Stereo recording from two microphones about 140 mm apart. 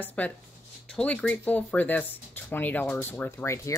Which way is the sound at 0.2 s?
10° left (ahead or behind).